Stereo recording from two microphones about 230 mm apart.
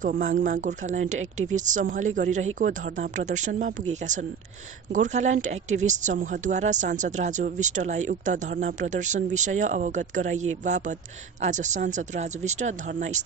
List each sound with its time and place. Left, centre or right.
0.0 s speech: right
4.9 s speech: right
10.3 s speech: right
10.6 s speech: right